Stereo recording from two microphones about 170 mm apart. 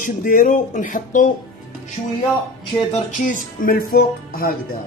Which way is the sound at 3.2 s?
50° left (ahead or behind).